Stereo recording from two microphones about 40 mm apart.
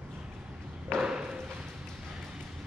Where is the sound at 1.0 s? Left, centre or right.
Centre.